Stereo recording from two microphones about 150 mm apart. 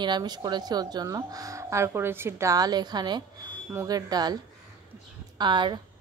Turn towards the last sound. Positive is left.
turn(degrees=-30)  # may be behind; listen again after turning